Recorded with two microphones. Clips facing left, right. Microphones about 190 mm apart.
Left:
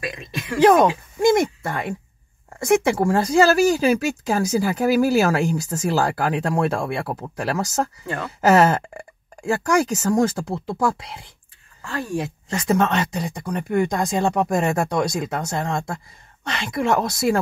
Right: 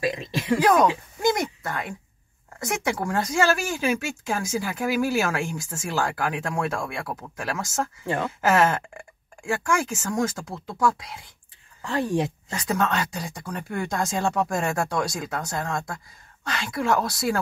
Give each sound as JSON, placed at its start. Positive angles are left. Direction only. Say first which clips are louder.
{"t": 0.0, "sound": "speech", "louder": "right 4 dB", "side_deg": -30}
{"t": 0.6, "sound": "speech", "louder": "left 6 dB", "side_deg": 25}
{"t": 11.8, "sound": "speech", "louder": "right 2 dB", "side_deg": -20}
{"t": 12.6, "sound": "speech", "louder": "left 5 dB", "side_deg": 25}